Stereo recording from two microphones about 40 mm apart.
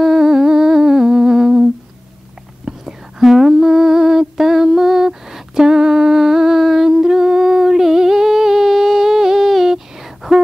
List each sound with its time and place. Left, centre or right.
0.0 s humming: centre
2.7 s whispering: right
3.2 s a sound: centre